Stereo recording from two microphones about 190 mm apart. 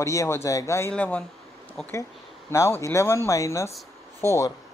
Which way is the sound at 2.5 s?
15° left (ahead or behind).